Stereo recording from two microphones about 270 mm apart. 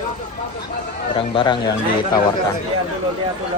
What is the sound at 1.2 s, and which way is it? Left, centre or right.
Speech, centre.